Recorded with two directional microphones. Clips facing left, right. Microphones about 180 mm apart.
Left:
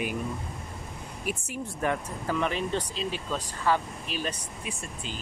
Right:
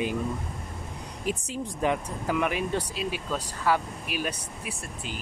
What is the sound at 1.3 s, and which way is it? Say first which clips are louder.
Speech: right 3 dB; 15° right (ahead or behind).